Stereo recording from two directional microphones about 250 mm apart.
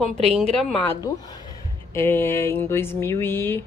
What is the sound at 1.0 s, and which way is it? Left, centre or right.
Speech, centre.